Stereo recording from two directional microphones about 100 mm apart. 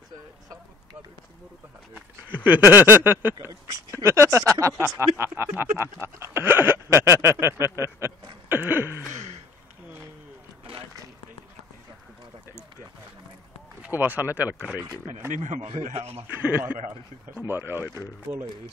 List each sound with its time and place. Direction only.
2.0 s speech: 20° right (ahead or behind)
8.5 s a sound: 20° right (ahead or behind)
13.8 s speech: 20° right (ahead or behind)
15.6 s a man's voice: 90° right
16.3 s speech: 20° right (ahead or behind)